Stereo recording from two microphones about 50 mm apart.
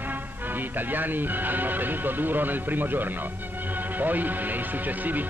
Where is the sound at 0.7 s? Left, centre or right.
Right.